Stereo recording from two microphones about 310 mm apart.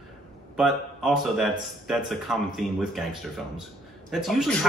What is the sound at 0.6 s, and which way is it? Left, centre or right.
A man's voice, centre.